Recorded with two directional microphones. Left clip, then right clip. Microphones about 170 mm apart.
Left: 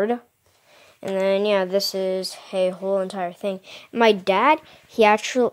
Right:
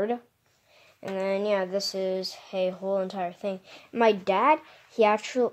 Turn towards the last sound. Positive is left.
turn(degrees=40)  # may be behind; listen again after turning